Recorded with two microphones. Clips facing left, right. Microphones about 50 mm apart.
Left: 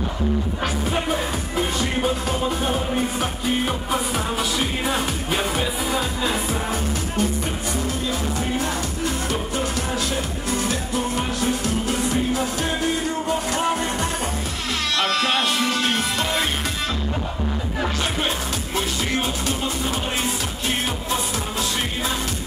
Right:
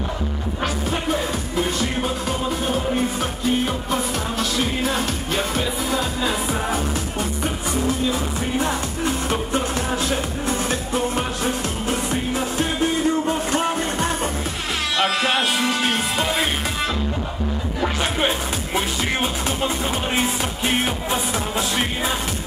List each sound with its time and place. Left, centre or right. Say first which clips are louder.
0.8 s music: even; centre
8.5 s music: right 2 dB; right
13.3 s music: right 1 dB; right
15.0 s music: right 1 dB; centre
18.8 s music: right 1 dB; centre